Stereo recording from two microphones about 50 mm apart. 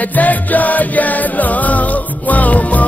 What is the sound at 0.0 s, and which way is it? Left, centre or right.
Music, left.